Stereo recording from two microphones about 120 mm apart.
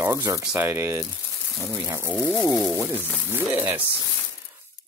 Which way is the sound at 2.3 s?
Centre (ahead or behind).